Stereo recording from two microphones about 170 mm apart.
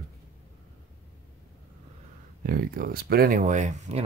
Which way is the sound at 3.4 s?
45° right (ahead or behind).